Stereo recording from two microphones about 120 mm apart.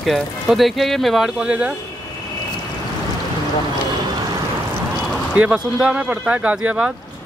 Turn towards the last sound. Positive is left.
turn(degrees=-10)  # may be behind; listen again after turning